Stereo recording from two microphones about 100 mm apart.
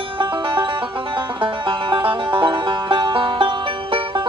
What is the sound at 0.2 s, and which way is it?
Music, 60° right (ahead or behind).